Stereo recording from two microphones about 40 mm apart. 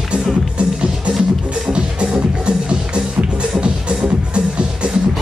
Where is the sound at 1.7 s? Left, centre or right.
Right.